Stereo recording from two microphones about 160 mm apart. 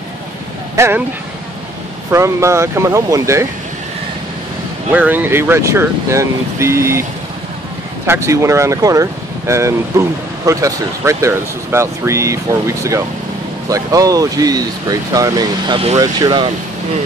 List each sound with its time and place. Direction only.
0.7 s speech: 15° right (ahead or behind)
2.0 s speech: 15° right (ahead or behind)
4.9 s speech: 10° right (ahead or behind)
8.1 s speech: 20° right (ahead or behind)